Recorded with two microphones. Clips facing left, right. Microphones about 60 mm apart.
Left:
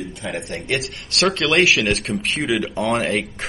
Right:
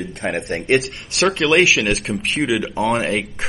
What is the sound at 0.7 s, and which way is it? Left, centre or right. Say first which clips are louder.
Speech: right 7 dB; right.